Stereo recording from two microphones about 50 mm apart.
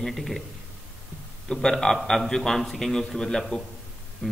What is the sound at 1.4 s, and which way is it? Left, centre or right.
A man's voice, centre.